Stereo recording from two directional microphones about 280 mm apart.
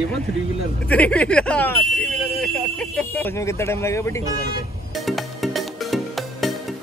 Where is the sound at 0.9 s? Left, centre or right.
Centre.